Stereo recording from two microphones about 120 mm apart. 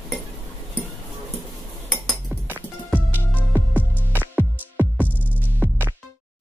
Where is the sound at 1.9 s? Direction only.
Centre (ahead or behind).